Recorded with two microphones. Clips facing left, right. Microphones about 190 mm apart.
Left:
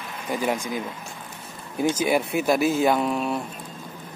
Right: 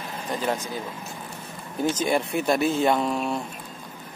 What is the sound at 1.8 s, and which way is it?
Speech, 10° left (ahead or behind).